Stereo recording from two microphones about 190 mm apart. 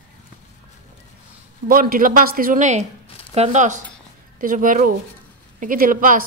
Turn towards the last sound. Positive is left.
turn(degrees=-45)  # may be behind; listen again after turning